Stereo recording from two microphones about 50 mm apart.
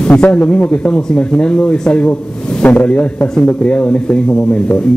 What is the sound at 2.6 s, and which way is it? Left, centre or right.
A man's voice, left.